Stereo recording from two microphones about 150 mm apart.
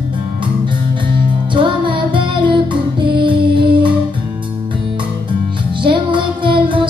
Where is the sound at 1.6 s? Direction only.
35° right (ahead or behind).